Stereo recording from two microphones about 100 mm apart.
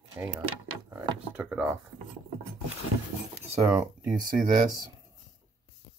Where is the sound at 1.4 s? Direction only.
10° right (ahead or behind).